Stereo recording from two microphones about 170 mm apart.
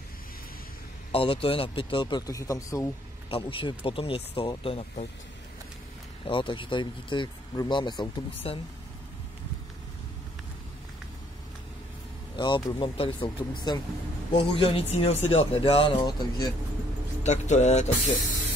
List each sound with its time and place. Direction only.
1.1 s speech: 30° left (ahead or behind)
3.3 s speech: 30° left (ahead or behind)
6.2 s speech: 30° left (ahead or behind)
12.4 s speech: 25° left (ahead or behind)
17.2 s speech: 45° left (ahead or behind)